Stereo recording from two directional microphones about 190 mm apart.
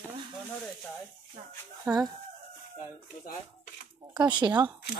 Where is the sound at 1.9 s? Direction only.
20° right (ahead or behind).